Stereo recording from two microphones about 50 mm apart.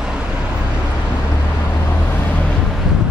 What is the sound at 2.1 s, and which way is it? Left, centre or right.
Vehicle, left.